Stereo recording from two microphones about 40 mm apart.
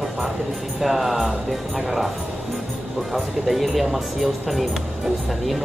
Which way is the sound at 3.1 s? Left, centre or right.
Centre.